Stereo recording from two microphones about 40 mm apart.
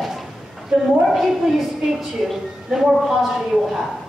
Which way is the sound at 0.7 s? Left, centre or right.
Right.